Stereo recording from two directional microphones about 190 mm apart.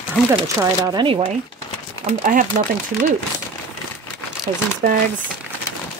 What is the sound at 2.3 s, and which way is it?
Speech, 45° right (ahead or behind).